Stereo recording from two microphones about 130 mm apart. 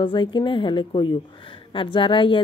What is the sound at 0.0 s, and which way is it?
A woman's voice, 40° left (ahead or behind).